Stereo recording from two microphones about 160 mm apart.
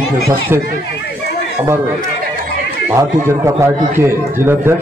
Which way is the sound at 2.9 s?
15° right (ahead or behind).